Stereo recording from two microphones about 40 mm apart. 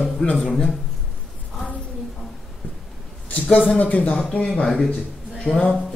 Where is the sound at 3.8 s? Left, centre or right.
Left.